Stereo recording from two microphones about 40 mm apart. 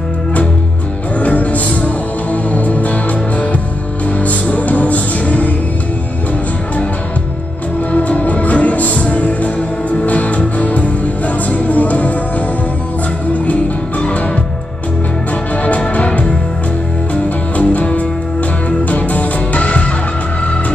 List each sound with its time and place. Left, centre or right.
1.2 s music: left
7.9 s music: left
14.0 s music: left
15.9 s music: left